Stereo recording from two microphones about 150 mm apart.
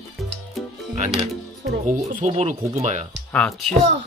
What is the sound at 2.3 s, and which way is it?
Speech, 40° right (ahead or behind).